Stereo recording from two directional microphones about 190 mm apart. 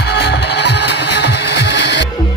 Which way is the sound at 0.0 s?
60° left (ahead or behind).